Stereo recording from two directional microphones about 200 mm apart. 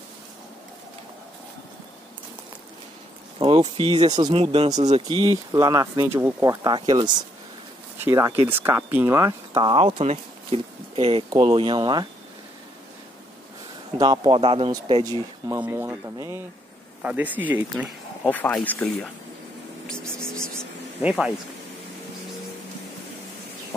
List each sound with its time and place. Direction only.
3.3 s speech: 30° right (ahead or behind)
5.5 s speech: 20° right (ahead or behind)
8.0 s speech: 10° right (ahead or behind)
13.9 s speech: 20° right (ahead or behind)
18.2 s speech: 5° left (ahead or behind)
21.0 s speech: 5° right (ahead or behind)